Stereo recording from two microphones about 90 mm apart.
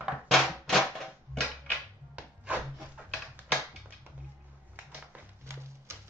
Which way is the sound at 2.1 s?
15° right (ahead or behind).